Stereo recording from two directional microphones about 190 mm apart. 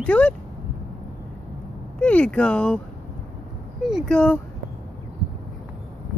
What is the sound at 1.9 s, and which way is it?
Speech, 5° left (ahead or behind).